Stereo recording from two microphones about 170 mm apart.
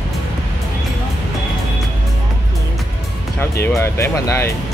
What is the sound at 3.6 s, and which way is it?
Speech, 15° left (ahead or behind).